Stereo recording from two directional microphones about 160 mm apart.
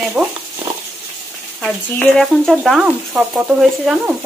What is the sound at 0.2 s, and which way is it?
Speech, 15° right (ahead or behind).